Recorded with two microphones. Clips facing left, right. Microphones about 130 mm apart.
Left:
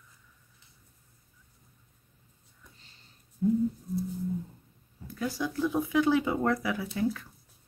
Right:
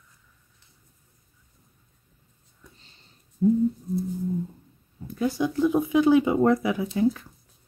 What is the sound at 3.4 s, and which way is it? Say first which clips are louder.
Humming: right 5 dB; 35° right (ahead or behind).